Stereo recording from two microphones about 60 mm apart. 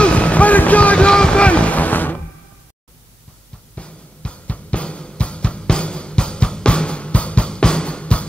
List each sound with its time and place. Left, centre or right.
0.0 s music: left
3.7 s music: centre